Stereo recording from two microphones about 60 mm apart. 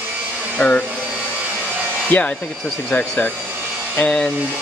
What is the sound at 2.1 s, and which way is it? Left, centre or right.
Speech, left.